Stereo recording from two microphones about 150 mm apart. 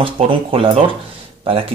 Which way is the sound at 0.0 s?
35° right (ahead or behind).